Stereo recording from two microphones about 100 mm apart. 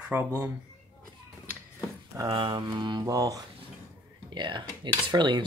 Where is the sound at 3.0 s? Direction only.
35° right (ahead or behind).